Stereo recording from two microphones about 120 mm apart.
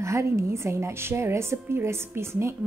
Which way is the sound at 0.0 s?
25° right (ahead or behind).